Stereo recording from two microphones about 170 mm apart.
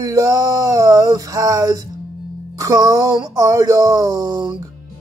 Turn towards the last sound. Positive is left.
turn(degrees=-25)  # may be behind; listen again after turning